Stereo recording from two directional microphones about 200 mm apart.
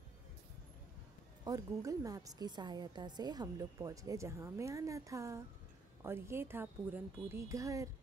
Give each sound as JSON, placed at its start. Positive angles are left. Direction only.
{"t": 1.4, "sound": "a woman's voice", "side_deg": -15}